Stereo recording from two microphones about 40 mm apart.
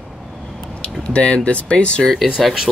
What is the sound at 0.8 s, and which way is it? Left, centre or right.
Speech, left.